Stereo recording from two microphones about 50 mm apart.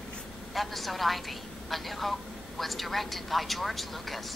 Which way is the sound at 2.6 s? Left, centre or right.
Centre.